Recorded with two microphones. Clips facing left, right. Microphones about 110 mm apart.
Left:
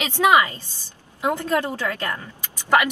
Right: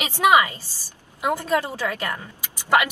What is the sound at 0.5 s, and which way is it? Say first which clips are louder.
Speech: left 1 dB; 20° left (ahead or behind).